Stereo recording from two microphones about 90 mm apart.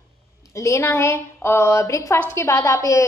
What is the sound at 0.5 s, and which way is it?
A woman's voice, 35° left (ahead or behind).